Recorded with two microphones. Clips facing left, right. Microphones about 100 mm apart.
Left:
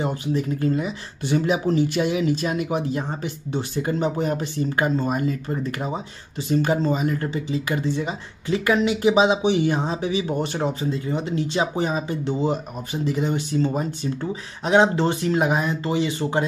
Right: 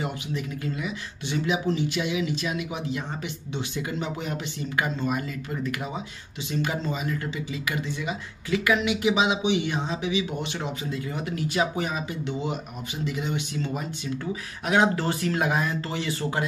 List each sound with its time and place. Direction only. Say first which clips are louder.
0.0 s speech: left 7 dB; 35° left (ahead or behind)
14.7 s speech: left 5 dB; 25° left (ahead or behind)